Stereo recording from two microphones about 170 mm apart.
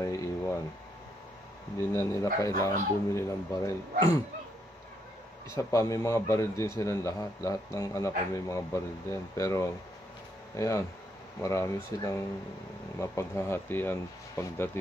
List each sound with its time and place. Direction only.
0.0 s a sound: 20° left (ahead or behind)
1.9 s a man's voice: 15° left (ahead or behind)
5.6 s a man's voice: 20° left (ahead or behind)